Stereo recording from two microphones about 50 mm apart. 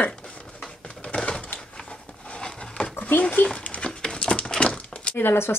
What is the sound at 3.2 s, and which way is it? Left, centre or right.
Speech, left.